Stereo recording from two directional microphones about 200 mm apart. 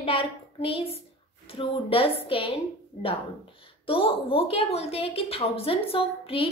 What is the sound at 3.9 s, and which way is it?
A woman's voice, 25° left (ahead or behind).